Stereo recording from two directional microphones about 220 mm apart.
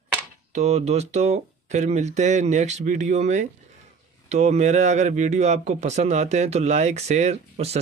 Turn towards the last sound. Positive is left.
turn(degrees=-30)  # may be behind; listen again after turning